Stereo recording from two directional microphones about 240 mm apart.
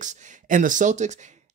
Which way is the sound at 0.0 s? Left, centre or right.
Right.